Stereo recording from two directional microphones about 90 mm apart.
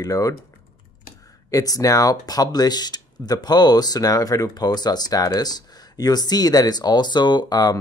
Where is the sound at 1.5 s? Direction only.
40° left (ahead or behind).